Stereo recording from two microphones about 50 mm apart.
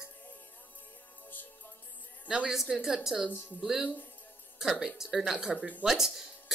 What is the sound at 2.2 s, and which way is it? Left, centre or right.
A woman's voice, centre.